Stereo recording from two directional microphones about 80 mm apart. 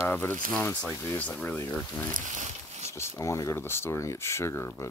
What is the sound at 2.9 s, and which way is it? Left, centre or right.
Speech, left.